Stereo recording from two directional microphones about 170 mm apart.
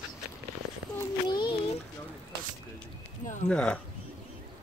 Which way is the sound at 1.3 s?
25° left (ahead or behind).